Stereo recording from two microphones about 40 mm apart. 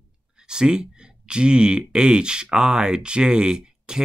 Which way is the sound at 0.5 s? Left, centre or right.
Centre.